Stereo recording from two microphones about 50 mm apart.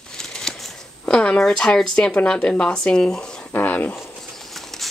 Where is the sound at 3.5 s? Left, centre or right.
Left.